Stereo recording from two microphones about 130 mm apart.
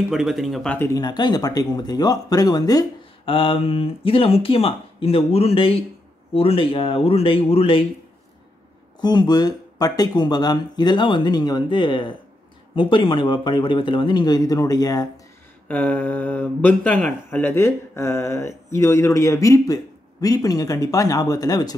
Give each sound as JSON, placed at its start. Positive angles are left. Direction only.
{"t": 0.1, "sound": "speech", "side_deg": 0}
{"t": 0.8, "sound": "speech", "side_deg": 30}
{"t": 3.3, "sound": "speech", "side_deg": 45}
{"t": 9.0, "sound": "speech", "side_deg": 35}
{"t": 15.7, "sound": "speech", "side_deg": 15}